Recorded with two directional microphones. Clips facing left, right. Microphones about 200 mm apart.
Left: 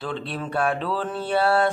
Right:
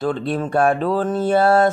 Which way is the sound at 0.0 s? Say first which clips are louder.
Right 8 dB; 45° right (ahead or behind).